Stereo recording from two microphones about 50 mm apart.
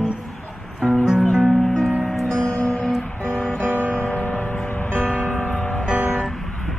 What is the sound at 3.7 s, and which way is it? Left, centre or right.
Music, right.